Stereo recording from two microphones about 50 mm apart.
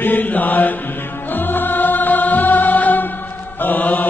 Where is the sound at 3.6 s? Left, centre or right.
Left.